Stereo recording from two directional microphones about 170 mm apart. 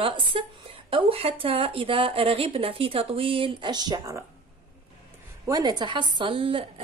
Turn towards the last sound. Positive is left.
turn(degrees=-30)  # may be behind; listen again after turning